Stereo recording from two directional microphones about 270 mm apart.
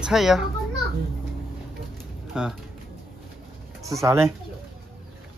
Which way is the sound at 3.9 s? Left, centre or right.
Centre.